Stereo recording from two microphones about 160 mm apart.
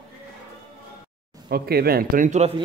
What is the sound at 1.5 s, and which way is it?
Speech, 75° right (ahead or behind).